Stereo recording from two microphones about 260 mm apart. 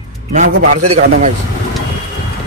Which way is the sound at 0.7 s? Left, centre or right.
Right.